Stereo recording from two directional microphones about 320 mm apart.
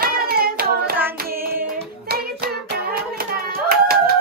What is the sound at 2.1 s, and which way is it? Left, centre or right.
Hands, right.